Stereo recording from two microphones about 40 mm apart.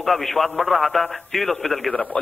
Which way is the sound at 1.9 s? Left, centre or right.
Centre.